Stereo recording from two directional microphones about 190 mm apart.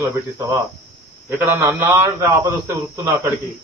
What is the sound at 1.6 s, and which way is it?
A man's voice, 10° right (ahead or behind).